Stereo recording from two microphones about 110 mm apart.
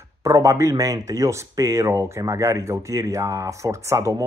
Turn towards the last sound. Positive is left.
turn(degrees=-30)  # may be behind; listen again after turning